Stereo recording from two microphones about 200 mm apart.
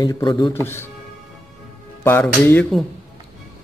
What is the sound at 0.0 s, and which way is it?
Speech, 20° left (ahead or behind).